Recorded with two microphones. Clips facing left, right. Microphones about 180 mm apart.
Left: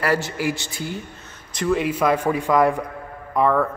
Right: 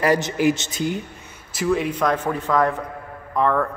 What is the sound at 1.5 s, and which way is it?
A man's voice, centre (ahead or behind).